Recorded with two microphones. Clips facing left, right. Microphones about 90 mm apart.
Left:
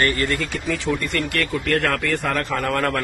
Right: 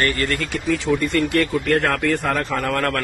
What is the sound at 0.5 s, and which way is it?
A man's voice, centre (ahead or behind).